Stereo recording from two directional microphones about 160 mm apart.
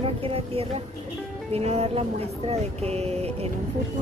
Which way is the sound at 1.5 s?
40° right (ahead or behind).